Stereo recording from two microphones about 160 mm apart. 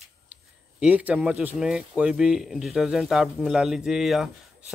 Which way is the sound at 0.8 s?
10° right (ahead or behind).